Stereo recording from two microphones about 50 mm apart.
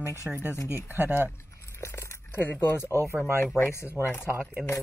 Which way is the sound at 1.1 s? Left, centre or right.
Right.